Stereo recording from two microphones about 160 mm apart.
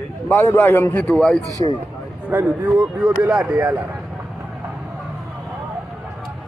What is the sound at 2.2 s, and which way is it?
Speech, 10° right (ahead or behind).